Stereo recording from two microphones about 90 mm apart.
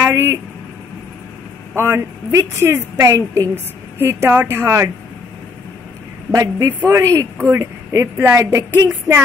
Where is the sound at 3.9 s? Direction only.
25° right (ahead or behind).